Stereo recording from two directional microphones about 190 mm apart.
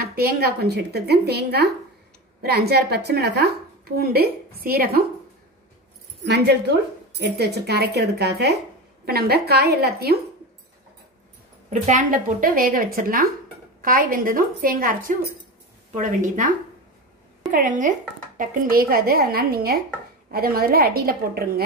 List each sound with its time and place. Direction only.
0.0 s a woman's voice: 55° right (ahead or behind)
6.2 s a woman's voice: 60° right (ahead or behind)
11.8 s a woman's voice: 40° right (ahead or behind)